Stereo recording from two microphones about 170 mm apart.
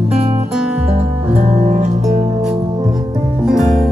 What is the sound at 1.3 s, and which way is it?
Music, 45° right (ahead or behind).